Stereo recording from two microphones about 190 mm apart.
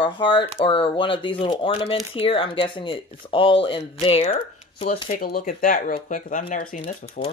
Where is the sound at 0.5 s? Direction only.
25° left (ahead or behind).